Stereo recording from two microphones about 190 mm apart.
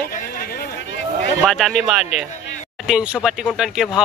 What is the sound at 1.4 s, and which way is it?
Speech, centre (ahead or behind).